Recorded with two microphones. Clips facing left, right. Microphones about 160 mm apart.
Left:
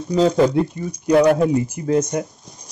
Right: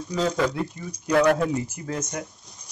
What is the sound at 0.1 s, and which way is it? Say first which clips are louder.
Speech: left 9 dB; 30° left (ahead or behind).